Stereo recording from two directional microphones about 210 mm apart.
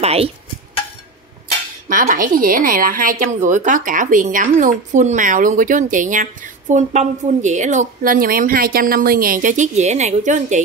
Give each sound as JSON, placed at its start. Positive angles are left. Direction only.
{"t": 0.0, "sound": "dishes", "side_deg": -30}
{"t": 1.9, "sound": "speech", "side_deg": -40}